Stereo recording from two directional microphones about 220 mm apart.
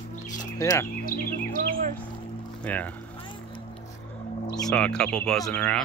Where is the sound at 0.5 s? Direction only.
10° left (ahead or behind).